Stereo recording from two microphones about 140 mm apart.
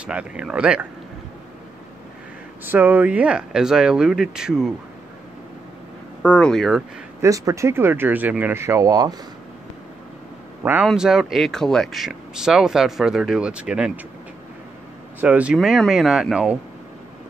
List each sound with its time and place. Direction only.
0.0 s speech: 10° right (ahead or behind)
2.6 s speech: 15° right (ahead or behind)
6.2 s speech: 10° left (ahead or behind)
7.2 s speech: 25° right (ahead or behind)
10.6 s a man's voice: 15° right (ahead or behind)
10.9 s speech: 5° right (ahead or behind)
15.1 s speech: 10° right (ahead or behind)